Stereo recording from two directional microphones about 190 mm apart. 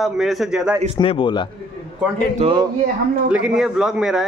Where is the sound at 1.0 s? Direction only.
25° left (ahead or behind).